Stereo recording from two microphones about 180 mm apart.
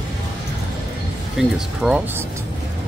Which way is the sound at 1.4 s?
5° right (ahead or behind).